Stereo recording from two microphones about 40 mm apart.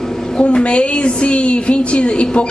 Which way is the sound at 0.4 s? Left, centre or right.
Left.